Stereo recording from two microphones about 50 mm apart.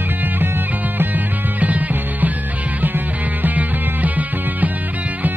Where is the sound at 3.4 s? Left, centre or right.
Right.